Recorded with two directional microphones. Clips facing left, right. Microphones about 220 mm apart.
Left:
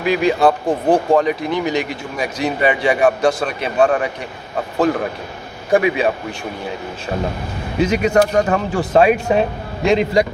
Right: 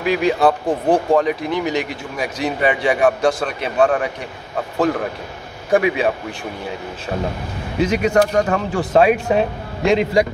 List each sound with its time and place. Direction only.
0.0 s speech: centre (ahead or behind)
5.7 s speech: centre (ahead or behind)
7.8 s speech: centre (ahead or behind)